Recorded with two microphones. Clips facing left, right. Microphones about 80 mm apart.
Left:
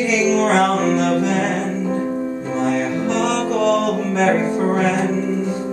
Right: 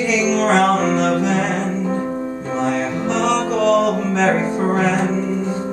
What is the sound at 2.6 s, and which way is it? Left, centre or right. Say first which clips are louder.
Music: left 1 dB; centre.